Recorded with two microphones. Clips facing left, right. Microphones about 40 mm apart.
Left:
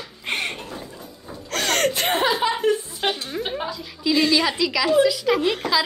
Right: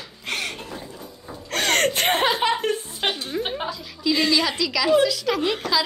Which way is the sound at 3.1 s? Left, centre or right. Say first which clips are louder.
Even; centre.